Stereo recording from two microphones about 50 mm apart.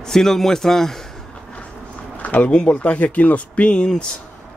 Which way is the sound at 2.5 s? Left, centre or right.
Centre.